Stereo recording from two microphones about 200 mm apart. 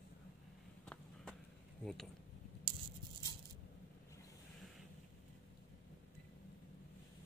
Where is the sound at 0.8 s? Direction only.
5° left (ahead or behind).